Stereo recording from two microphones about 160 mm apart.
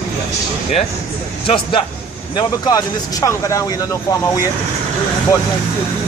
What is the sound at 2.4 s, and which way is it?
Speech, 25° left (ahead or behind).